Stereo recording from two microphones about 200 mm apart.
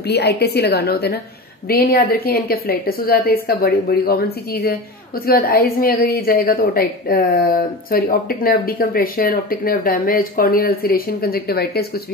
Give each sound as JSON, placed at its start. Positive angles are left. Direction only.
{"t": 0.0, "sound": "a woman's voice", "side_deg": 55}